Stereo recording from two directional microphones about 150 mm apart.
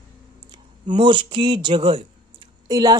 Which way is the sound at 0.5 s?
30° right (ahead or behind).